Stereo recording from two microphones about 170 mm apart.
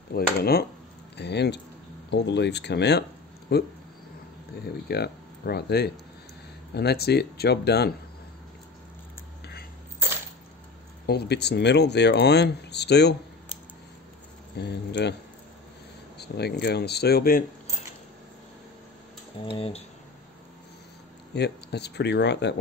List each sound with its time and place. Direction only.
0.1 s speech: 65° left (ahead or behind)
1.1 s speech: 80° left
4.8 s speech: 70° left (ahead or behind)
11.1 s speech: 75° left (ahead or behind)
14.6 s speech: 80° left
16.2 s speech: 75° left (ahead or behind)
19.4 s speech: 35° left (ahead or behind)
21.3 s speech: 80° left